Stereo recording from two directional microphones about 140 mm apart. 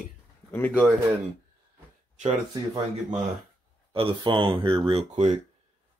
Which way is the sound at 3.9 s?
40° right (ahead or behind).